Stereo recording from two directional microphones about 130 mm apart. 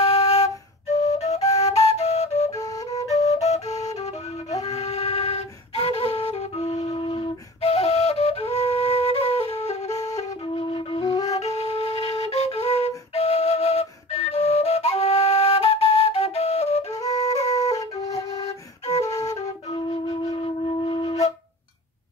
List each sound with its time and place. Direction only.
0.0 s flute: 55° left (ahead or behind)
2.5 s flute: 25° left (ahead or behind)
3.2 s flute: 55° left (ahead or behind)
10.5 s flute: 45° left (ahead or behind)
16.9 s flute: 25° left (ahead or behind)
19.7 s flute: 35° left (ahead or behind)
20.6 s wind instrument: 45° left (ahead or behind)